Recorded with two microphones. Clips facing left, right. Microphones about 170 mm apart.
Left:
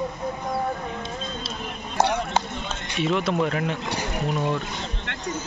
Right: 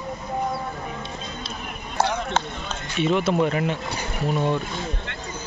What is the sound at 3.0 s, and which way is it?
Speech, centre (ahead or behind).